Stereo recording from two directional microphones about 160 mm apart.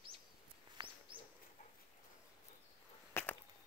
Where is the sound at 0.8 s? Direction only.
30° right (ahead or behind).